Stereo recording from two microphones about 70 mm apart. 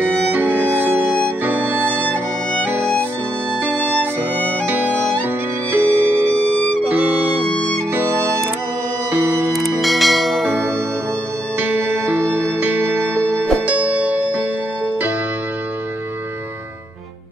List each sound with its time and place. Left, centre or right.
0.0 s music: right
3.6 s music: right
9.8 s church bell: centre
12.1 s music: right